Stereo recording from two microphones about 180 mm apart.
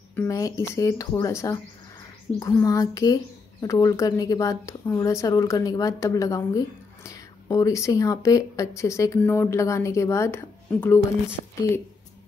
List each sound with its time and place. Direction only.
0.1 s speech: 15° left (ahead or behind)